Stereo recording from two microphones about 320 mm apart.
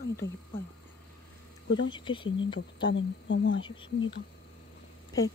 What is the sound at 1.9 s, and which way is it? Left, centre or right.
Speech, centre.